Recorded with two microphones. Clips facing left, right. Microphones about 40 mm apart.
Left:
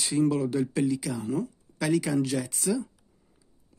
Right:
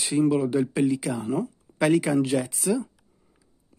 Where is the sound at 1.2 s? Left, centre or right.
Right.